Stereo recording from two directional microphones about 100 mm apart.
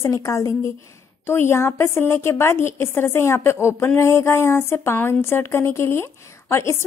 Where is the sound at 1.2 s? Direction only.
25° left (ahead or behind).